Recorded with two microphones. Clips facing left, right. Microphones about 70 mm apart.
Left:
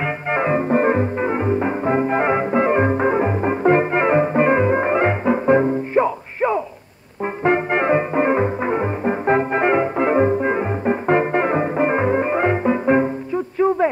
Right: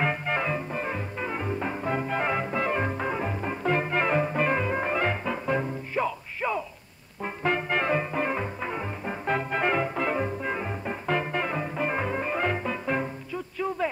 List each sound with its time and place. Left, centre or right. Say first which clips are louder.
0.3 s music: left 10 dB; left